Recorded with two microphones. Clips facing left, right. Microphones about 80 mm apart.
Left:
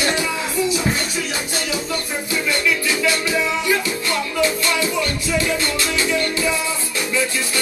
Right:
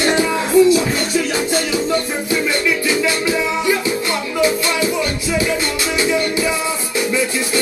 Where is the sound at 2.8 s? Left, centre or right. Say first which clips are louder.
Right 3 dB; right.